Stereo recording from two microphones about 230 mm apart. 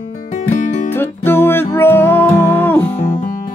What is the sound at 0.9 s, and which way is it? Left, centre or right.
Music, centre.